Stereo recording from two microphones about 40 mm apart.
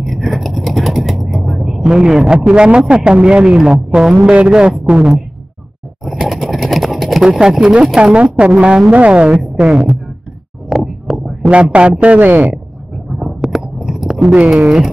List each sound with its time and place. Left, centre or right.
0.0 s a sound: centre
1.9 s a man's voice: centre
3.5 s speech: centre
4.3 s a man's voice: right
6.2 s a sound: centre
7.2 s a man's voice: centre
8.0 s a man's voice: right
9.6 s a man's voice: centre
10.7 s a sound: centre
11.4 s speech: right
12.9 s a sound: centre
14.1 s a man's voice: right